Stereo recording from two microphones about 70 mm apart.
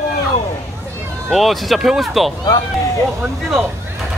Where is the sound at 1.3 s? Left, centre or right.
Centre.